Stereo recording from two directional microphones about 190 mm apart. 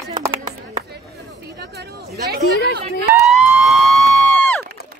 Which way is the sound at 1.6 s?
60° right (ahead or behind).